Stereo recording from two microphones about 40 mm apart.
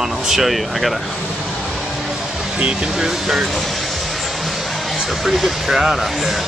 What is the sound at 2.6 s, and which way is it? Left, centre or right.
Speech, right.